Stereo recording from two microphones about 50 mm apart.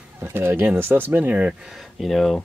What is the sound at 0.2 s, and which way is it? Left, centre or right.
Speech, right.